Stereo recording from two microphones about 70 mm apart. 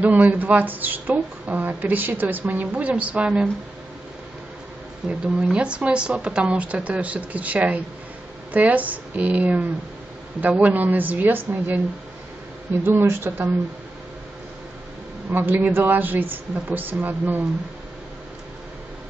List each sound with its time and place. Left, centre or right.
0.0 s speech: right
5.0 s a woman's voice: centre
12.8 s speech: right
15.3 s speech: right